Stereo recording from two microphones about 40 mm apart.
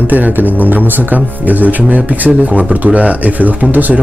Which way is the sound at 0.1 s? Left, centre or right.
Right.